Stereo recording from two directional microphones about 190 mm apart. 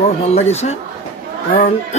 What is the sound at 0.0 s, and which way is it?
Speech, 35° left (ahead or behind).